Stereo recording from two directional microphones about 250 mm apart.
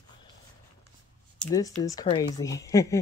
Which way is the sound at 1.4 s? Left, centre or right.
Centre.